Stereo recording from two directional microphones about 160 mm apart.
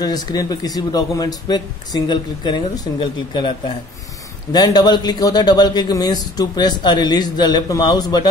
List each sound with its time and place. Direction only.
0.0 s a man's voice: 25° left (ahead or behind)